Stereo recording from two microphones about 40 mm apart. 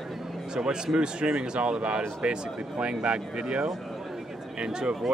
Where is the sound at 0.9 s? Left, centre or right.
Right.